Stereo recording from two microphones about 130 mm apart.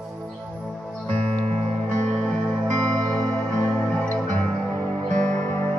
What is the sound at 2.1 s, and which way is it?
Music, 5° left (ahead or behind).